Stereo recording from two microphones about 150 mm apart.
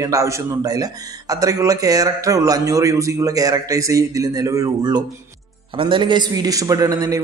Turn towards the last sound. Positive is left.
turn(degrees=-20)  # may be behind; listen again after turning